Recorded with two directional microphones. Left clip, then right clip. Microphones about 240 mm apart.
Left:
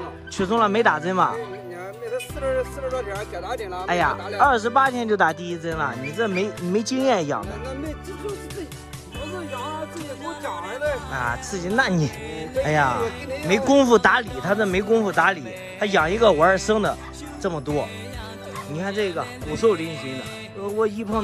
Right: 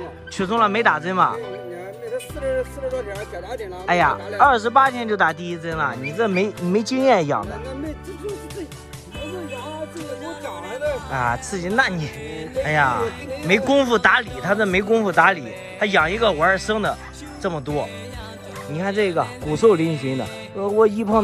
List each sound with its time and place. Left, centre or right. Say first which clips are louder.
0.4 s speech: right 1 dB; centre
3.0 s speech: even; centre
3.8 s speech: right 4 dB; centre
10.2 s speech: left 1 dB; centre
11.1 s speech: right 3 dB; centre
12.9 s speech: right 1 dB; centre
13.5 s speech: left 1 dB; centre
18.9 s speech: right 6 dB; centre